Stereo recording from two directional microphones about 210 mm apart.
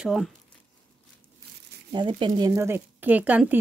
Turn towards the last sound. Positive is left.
turn(degrees=-5)  # may be behind; listen again after turning